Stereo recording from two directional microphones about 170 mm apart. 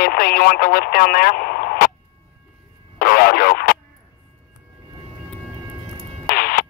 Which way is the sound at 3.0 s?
60° left (ahead or behind).